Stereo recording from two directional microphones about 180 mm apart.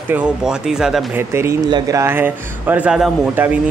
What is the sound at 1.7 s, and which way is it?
Speech, 20° right (ahead or behind).